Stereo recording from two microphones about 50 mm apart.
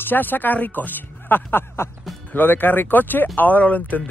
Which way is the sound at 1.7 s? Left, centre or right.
Left.